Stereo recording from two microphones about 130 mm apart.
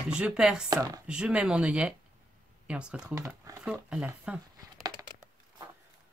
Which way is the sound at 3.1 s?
25° right (ahead or behind).